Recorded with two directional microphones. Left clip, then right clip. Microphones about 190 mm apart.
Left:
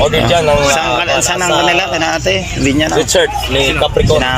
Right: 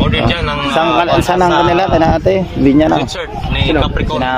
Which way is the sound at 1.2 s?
25° right (ahead or behind).